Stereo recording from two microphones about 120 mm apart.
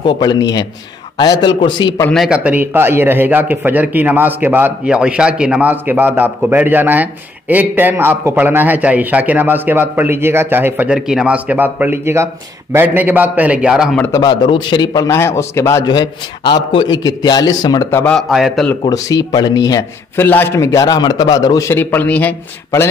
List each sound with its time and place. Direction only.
0.0 s a man's voice: 40° left (ahead or behind)
2.1 s a man's voice: 5° right (ahead or behind)
11.0 s a man's voice: 5° right (ahead or behind)
14.1 s a man's voice: 35° left (ahead or behind)
15.8 s a man's voice: 35° left (ahead or behind)
17.9 s a man's voice: 10° left (ahead or behind)
18.3 s a man's voice: centre (ahead or behind)
18.9 s a man's voice: 35° left (ahead or behind)
20.2 s a man's voice: 15° left (ahead or behind)